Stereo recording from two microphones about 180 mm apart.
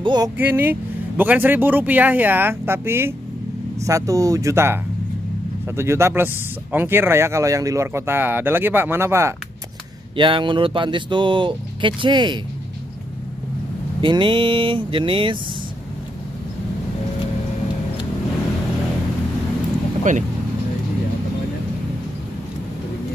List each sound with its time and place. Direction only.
0.0 s speech: 25° right (ahead or behind)
0.4 s speech: 10° right (ahead or behind)
5.8 s speech: 15° right (ahead or behind)
10.1 s speech: 25° right (ahead or behind)
14.0 s speech: 25° right (ahead or behind)
20.0 s speech: 45° right (ahead or behind)